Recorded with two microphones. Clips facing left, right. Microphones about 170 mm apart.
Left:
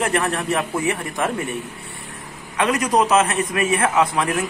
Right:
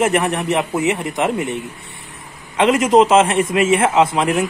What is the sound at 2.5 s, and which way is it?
Speech, 25° right (ahead or behind).